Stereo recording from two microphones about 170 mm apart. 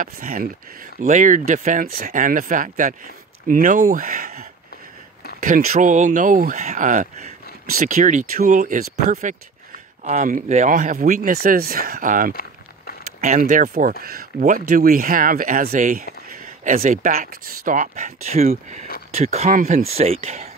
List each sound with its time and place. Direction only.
0.0 s speech: 50° right (ahead or behind)